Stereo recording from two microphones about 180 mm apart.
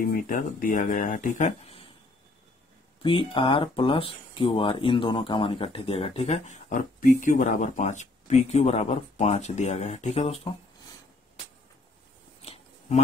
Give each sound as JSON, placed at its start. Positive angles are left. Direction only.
{"t": 0.1, "sound": "speech", "side_deg": 50}
{"t": 3.0, "sound": "speech", "side_deg": 30}
{"t": 12.4, "sound": "a sound", "side_deg": 35}